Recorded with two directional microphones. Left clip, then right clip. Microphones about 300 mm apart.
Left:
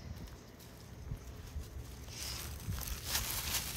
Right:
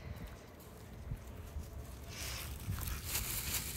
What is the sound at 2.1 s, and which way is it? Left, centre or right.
Boat, centre.